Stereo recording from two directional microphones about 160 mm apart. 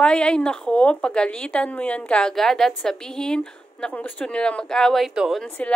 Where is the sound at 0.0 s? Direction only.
5° left (ahead or behind).